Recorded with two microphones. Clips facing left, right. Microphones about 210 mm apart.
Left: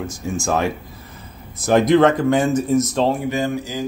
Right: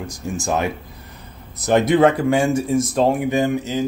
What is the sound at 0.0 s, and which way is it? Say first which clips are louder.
Speech: left 2 dB; centre (ahead or behind).